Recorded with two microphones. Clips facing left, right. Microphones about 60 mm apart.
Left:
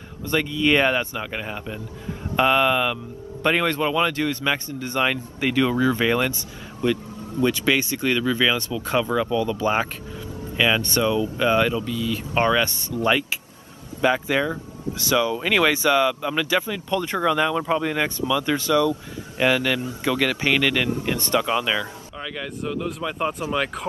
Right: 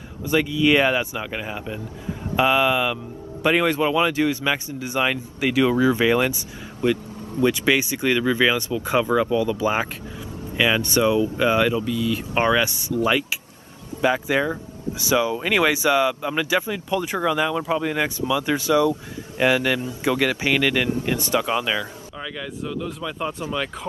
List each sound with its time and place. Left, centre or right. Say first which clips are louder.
0.2 s speech: right 2 dB; centre
14.0 s speech: even; centre